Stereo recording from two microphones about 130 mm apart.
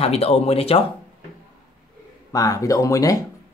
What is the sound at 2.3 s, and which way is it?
Speech, 25° left (ahead or behind).